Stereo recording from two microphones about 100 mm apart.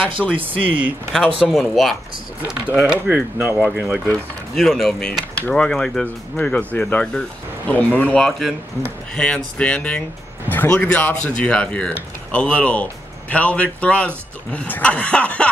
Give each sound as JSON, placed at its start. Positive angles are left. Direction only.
{"t": 0.4, "sound": "speech", "side_deg": -15}
{"t": 1.4, "sound": "speech", "side_deg": 0}
{"t": 4.6, "sound": "speech", "side_deg": 0}
{"t": 8.3, "sound": "speech", "side_deg": 0}